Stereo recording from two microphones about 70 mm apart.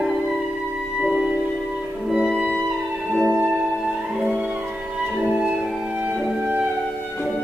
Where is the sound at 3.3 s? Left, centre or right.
Right.